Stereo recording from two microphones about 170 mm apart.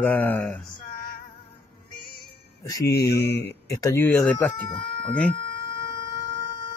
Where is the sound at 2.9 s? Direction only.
70° left (ahead or behind).